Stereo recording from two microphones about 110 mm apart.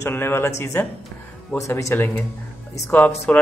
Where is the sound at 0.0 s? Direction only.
20° left (ahead or behind).